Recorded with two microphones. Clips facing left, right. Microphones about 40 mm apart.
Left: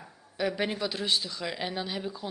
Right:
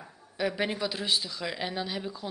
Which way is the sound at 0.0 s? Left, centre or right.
Centre.